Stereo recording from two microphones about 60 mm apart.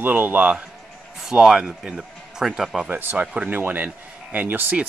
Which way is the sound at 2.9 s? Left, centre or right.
Right.